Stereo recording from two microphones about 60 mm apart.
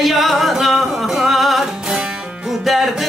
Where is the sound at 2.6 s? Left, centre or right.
Centre.